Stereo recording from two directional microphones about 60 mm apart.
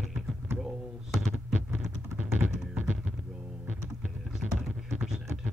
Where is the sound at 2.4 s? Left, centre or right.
Right.